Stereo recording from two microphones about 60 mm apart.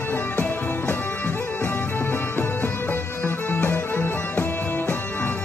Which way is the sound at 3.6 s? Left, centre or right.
Left.